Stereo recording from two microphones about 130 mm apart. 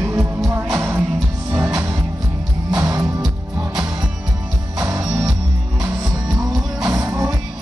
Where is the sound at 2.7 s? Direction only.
25° right (ahead or behind).